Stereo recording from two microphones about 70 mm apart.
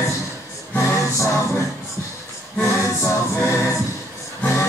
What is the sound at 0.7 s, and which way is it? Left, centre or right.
A capella, left.